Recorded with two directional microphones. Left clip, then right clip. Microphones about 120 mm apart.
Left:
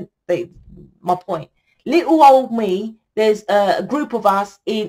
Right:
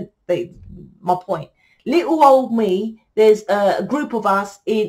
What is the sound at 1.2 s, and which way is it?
Speech, 40° left (ahead or behind).